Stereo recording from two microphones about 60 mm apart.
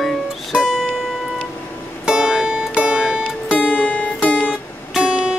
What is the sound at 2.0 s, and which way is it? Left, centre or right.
Music, centre.